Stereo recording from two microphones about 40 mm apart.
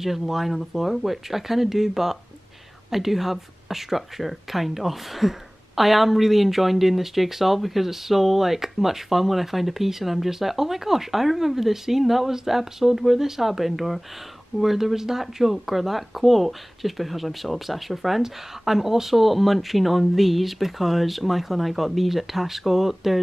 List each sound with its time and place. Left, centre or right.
0.0 s speech: centre